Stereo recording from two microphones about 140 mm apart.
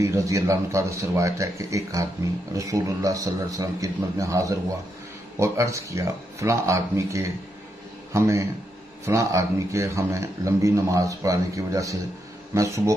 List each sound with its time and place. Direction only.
0.0 s speech: 20° right (ahead or behind)